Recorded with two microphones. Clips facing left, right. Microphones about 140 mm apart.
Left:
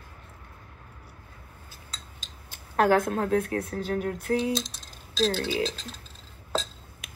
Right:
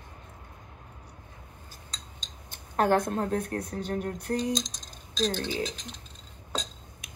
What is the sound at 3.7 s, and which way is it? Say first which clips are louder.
Speech: left 2 dB; 20° right (ahead or behind).